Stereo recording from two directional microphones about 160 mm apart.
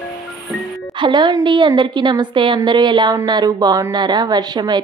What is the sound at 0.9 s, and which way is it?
A woman's voice, 30° right (ahead or behind).